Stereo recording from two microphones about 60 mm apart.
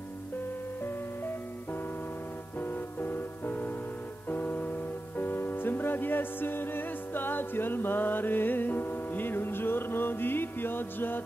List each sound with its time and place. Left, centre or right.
2.6 s music: left